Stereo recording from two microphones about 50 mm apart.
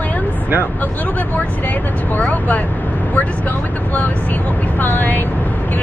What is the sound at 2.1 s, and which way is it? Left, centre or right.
Speech, left.